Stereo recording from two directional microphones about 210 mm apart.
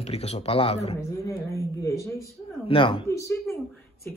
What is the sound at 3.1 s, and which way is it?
A woman's voice, 15° left (ahead or behind).